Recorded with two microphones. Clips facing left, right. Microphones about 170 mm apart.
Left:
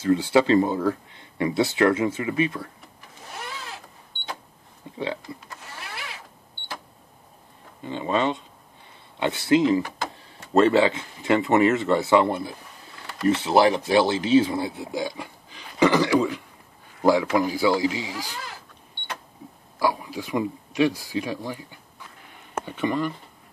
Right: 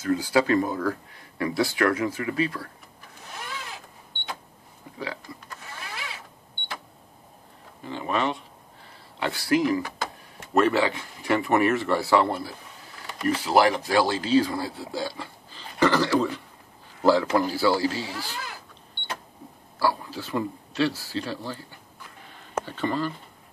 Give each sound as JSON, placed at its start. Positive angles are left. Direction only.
{"t": 0.0, "sound": "speech", "side_deg": 25}
{"t": 4.9, "sound": "speech", "side_deg": 25}
{"t": 7.8, "sound": "speech", "side_deg": 20}
{"t": 19.8, "sound": "speech", "side_deg": 15}